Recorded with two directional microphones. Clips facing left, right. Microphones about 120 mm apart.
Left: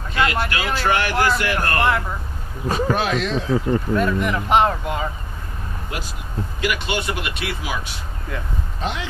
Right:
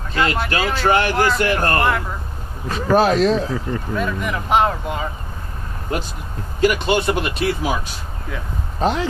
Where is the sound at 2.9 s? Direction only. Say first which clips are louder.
Right 10 dB; 40° right (ahead or behind).